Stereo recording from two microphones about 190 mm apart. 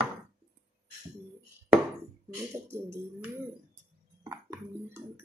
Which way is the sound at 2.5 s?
15° right (ahead or behind).